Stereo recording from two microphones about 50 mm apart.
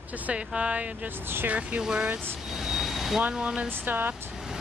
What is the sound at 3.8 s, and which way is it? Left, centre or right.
Speech, right.